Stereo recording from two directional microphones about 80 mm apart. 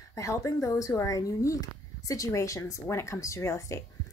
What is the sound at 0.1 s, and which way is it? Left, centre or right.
Speech, left.